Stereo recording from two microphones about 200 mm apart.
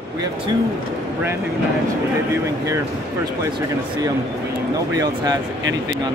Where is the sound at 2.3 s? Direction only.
15° right (ahead or behind).